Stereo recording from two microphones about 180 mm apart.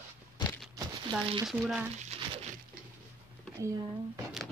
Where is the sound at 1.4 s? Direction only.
Centre (ahead or behind).